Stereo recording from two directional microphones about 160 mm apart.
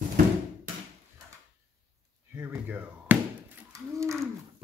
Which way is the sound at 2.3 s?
15° right (ahead or behind).